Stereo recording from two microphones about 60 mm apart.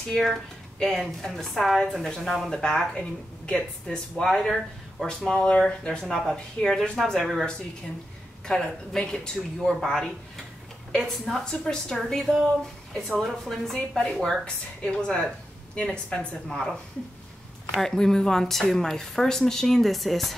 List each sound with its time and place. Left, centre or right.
0.1 s a woman's voice: centre
8.5 s a woman's voice: centre
14.4 s speech: centre
17.7 s speech: centre